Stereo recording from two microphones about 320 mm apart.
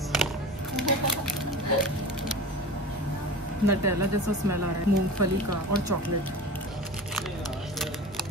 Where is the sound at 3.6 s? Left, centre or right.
Right.